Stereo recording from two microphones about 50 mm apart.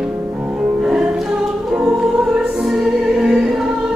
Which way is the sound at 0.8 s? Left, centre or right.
Centre.